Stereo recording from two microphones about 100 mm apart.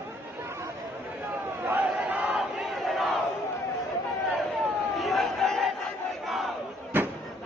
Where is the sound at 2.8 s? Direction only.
Centre (ahead or behind).